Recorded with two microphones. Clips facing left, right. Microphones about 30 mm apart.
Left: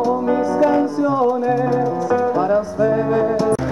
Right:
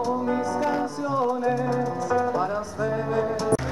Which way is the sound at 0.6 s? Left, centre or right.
Left.